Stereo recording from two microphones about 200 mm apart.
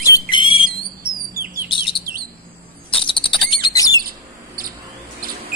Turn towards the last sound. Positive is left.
turn(degrees=-45)  # may be behind; listen again after turning